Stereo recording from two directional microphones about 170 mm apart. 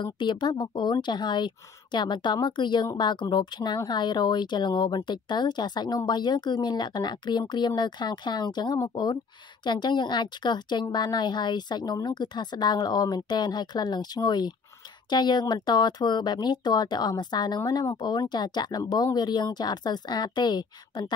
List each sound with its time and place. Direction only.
0.0 s a woman's voice: 25° left (ahead or behind)